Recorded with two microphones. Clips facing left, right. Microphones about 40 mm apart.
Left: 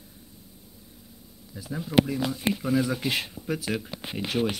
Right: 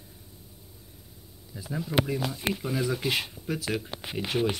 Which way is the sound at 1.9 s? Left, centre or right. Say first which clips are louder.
Left 5 dB; centre.